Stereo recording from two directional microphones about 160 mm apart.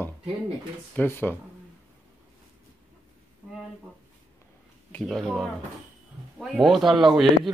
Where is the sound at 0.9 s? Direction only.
15° left (ahead or behind).